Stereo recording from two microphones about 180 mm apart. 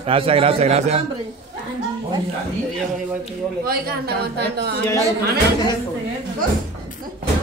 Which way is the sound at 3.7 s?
65° right (ahead or behind).